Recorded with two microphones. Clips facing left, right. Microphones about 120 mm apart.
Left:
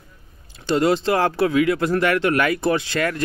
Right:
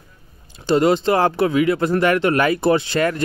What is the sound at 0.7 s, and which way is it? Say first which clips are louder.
Speech: right 2 dB; 25° right (ahead or behind).